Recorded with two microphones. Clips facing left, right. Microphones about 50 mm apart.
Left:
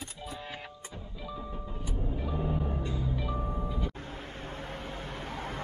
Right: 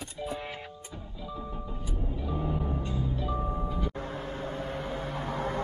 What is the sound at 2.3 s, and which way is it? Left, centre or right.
Music, centre.